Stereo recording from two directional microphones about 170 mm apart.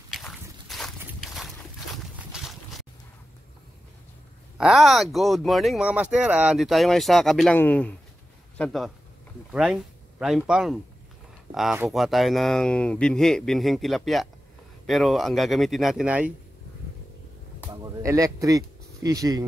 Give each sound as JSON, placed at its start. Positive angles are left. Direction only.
{"t": 0.1, "sound": "a sound", "side_deg": 0}
{"t": 2.3, "sound": "boat", "side_deg": 0}
{"t": 4.6, "sound": "speech", "side_deg": 0}
{"t": 17.6, "sound": "speech", "side_deg": -15}